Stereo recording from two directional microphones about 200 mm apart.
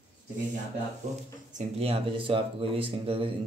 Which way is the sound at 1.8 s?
25° right (ahead or behind).